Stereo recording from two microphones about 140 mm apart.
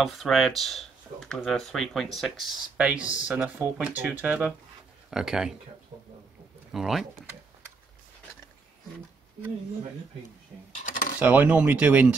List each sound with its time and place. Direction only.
0.0 s speech: centre (ahead or behind)
6.7 s speech: centre (ahead or behind)
10.9 s a sound: 80° left
11.1 s speech: 10° right (ahead or behind)